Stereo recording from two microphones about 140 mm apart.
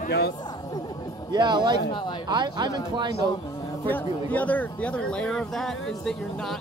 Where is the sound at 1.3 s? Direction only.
35° right (ahead or behind).